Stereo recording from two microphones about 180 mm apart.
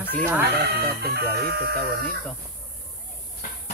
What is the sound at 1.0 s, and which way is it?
Speech, 60° right (ahead or behind).